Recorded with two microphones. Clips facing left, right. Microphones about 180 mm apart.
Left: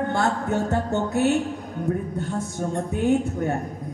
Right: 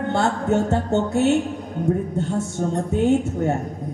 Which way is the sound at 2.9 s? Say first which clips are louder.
Right 2 dB; 25° right (ahead or behind).